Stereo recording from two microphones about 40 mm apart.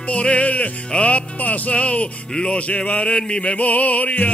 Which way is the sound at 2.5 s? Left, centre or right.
Left.